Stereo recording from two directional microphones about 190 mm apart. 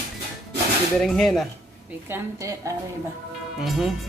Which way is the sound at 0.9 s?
Centre (ahead or behind).